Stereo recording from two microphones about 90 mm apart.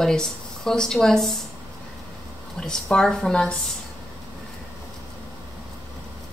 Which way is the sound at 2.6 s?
5° left (ahead or behind).